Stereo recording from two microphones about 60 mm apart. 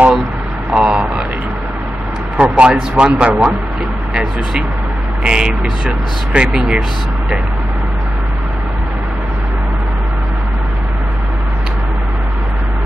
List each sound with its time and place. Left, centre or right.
0.7 s speech: centre
2.3 s speech: centre
5.2 s speech: centre